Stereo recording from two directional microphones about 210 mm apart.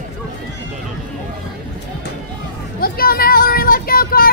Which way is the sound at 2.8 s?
45° left (ahead or behind).